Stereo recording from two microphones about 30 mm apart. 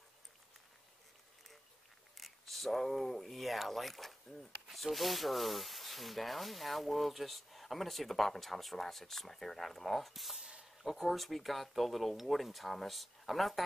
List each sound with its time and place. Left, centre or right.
2.1 s speech: centre
4.7 s rub: centre
13.2 s speech: centre